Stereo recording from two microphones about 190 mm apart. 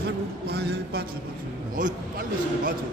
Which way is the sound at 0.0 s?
60° right (ahead or behind).